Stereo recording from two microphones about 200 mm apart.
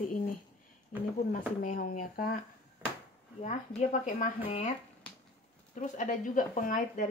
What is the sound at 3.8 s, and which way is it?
Speech, 35° left (ahead or behind).